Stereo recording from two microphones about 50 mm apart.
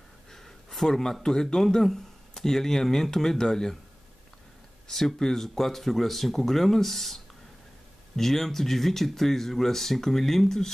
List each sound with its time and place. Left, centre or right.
0.3 s speech: centre
4.8 s speech: centre
8.2 s speech: centre